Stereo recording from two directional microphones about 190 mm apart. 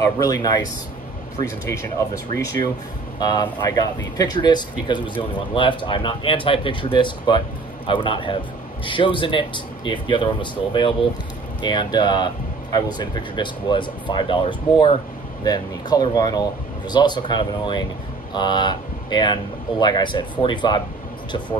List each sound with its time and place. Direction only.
0.0 s speech: 20° left (ahead or behind)
3.2 s speech: 20° left (ahead or behind)